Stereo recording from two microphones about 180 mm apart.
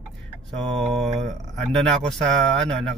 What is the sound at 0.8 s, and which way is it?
Speech, centre (ahead or behind).